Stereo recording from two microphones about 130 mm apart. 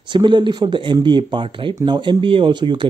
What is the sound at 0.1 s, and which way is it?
Speech, 35° right (ahead or behind).